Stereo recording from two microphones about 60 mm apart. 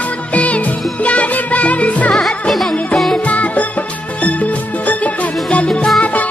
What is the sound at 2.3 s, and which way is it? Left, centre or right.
Music, centre.